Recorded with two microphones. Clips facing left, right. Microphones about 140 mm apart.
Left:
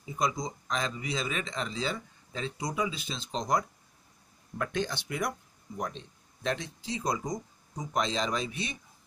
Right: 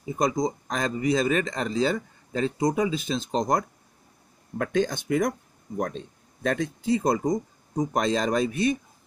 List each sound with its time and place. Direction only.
0.1 s speech: 50° right (ahead or behind)